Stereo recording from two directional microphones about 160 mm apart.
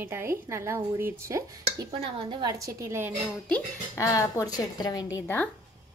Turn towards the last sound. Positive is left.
turn(degrees=25)  # may be behind; listen again after turning